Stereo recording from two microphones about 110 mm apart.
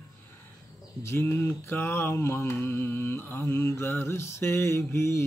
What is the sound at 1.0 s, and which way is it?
Mantra, 20° left (ahead or behind).